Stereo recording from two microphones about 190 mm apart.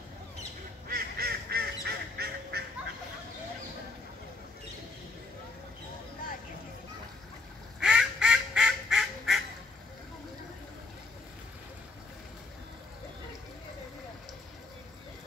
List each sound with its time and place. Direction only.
0.8 s honk: 50° right (ahead or behind)
7.8 s quack: 5° right (ahead or behind)